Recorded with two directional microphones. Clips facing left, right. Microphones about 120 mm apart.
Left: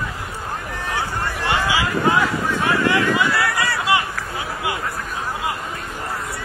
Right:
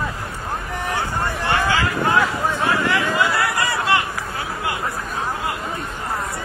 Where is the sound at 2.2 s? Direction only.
15° right (ahead or behind).